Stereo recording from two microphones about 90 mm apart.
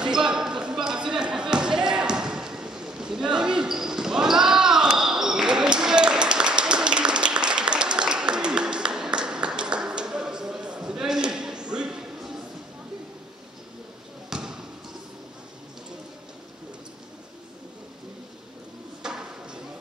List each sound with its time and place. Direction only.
0.0 s basketball bounce: 10° right (ahead or behind)
14.3 s basketball bounce: 5° right (ahead or behind)
19.0 s a sound: 10° right (ahead or behind)